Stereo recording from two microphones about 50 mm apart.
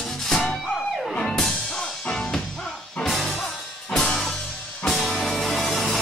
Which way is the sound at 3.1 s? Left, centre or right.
Centre.